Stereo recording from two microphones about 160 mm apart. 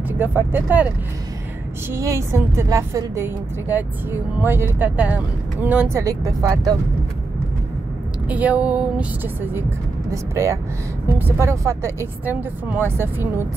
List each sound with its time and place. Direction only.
0.2 s a woman's voice: 10° right (ahead or behind)
6.0 s speech: 20° right (ahead or behind)
8.3 s a woman's voice: 10° right (ahead or behind)